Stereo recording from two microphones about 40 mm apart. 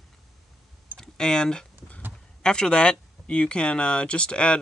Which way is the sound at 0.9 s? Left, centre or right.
Centre.